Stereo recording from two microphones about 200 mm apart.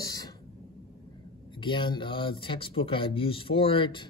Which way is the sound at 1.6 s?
25° left (ahead or behind).